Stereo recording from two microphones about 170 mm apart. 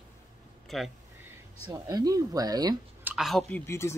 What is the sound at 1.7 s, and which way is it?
Speech, 20° right (ahead or behind).